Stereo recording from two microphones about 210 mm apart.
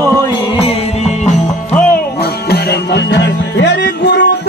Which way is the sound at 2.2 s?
50° left (ahead or behind).